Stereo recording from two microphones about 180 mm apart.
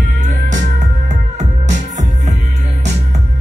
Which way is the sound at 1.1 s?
40° right (ahead or behind).